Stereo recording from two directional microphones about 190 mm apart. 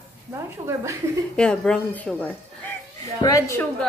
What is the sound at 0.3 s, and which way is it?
Speech, 15° right (ahead or behind).